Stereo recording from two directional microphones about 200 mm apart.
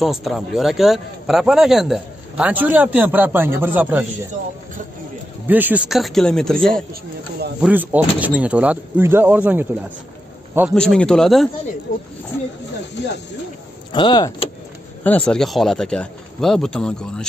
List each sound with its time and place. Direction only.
0.0 s a man's voice: centre (ahead or behind)
5.5 s a man's voice: 10° right (ahead or behind)
6.7 s speech: 50° right (ahead or behind)
7.6 s speech: 10° right (ahead or behind)
10.7 s a man's voice: 5° left (ahead or behind)
13.9 s speech: 20° left (ahead or behind)
15.0 s a man's voice: 5° left (ahead or behind)